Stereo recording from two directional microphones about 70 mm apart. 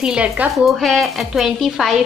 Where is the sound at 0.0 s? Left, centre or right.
Centre.